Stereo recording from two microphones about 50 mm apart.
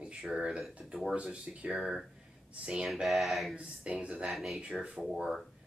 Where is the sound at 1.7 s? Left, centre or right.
Centre.